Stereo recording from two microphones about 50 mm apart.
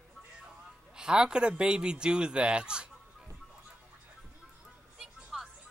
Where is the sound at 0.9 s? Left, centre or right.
Centre.